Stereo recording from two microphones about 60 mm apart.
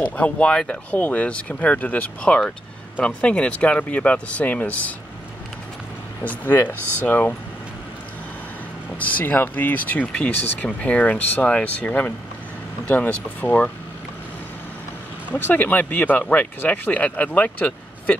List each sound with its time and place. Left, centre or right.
0.2 s speech: centre
2.2 s speech: centre
6.2 s speech: left
8.9 s speech: left
15.3 s speech: left